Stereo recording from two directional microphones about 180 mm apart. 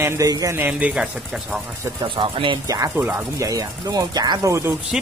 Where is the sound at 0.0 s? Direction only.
15° right (ahead or behind).